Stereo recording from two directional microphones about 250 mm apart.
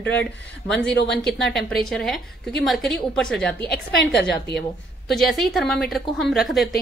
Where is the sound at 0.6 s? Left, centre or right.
Centre.